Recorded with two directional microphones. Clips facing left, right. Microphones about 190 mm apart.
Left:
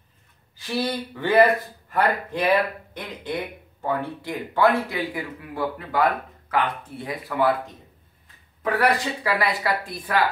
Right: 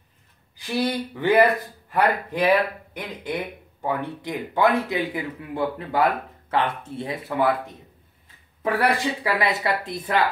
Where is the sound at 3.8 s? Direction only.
20° right (ahead or behind).